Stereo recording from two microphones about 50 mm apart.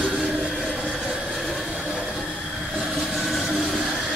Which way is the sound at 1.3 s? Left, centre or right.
Centre.